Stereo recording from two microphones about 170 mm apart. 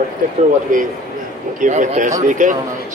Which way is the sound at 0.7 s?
50° right (ahead or behind).